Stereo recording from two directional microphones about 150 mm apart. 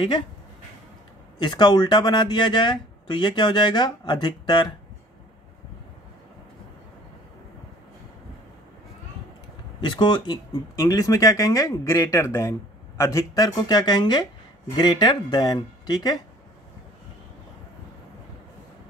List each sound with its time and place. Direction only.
1.4 s speech: 30° left (ahead or behind)
9.8 s speech: 30° left (ahead or behind)